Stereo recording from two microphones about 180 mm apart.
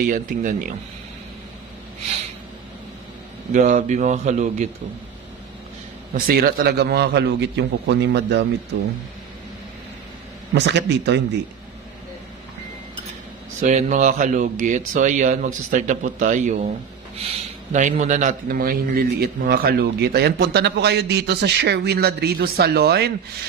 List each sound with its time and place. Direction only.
0.1 s speech: 45° right (ahead or behind)
3.5 s speech: 45° right (ahead or behind)
6.1 s a man's voice: 55° right (ahead or behind)
10.5 s speech: 75° right (ahead or behind)
13.6 s a man's voice: 40° right (ahead or behind); by 23.1 s 65° right (ahead or behind)